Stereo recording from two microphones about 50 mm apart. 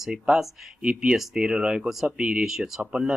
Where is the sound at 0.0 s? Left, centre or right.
Centre; by 2.4 s right.